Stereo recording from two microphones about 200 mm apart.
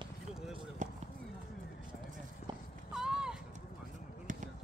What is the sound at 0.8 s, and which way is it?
Clip-clop, 40° right (ahead or behind).